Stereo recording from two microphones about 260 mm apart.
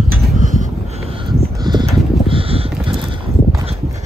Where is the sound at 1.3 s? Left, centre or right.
Centre.